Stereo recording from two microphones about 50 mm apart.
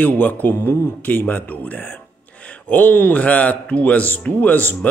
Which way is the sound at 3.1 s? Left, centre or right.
Left.